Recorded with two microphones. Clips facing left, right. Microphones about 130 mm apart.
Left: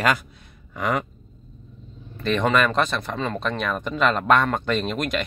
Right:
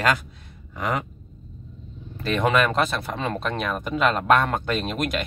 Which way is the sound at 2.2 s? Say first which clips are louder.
Left 1 dB; 5° right (ahead or behind).